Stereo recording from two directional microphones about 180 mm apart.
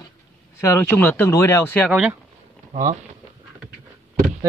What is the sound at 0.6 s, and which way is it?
Speech, 10° left (ahead or behind).